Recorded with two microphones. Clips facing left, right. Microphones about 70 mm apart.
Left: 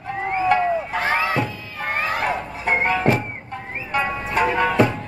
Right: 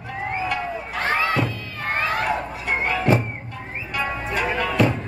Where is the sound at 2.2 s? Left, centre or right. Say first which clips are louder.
Left 2 dB; left.